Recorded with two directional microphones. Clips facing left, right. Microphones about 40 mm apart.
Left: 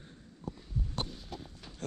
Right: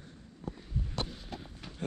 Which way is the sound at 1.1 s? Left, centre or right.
Centre.